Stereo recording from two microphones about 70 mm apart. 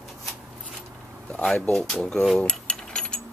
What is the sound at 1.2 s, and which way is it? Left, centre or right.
Speech, centre.